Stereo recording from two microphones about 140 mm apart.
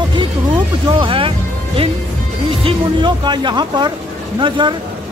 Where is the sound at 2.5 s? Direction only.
40° right (ahead or behind).